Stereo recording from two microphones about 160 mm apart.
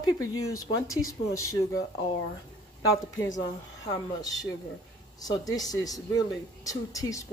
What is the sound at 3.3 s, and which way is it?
Speech, 20° left (ahead or behind).